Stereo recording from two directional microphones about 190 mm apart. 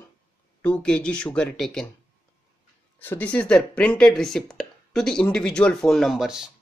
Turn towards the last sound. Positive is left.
turn(degrees=-5)  # may be behind; listen again after turning